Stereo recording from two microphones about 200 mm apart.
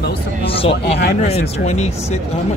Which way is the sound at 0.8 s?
55° left (ahead or behind).